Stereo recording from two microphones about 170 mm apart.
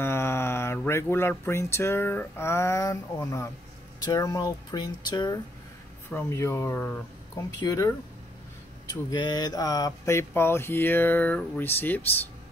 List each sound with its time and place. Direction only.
0.0 s mantra: 15° left (ahead or behind)
0.8 s speech: 15° left (ahead or behind)